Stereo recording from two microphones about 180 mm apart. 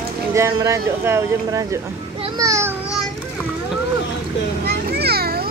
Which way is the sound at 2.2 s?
20° right (ahead or behind).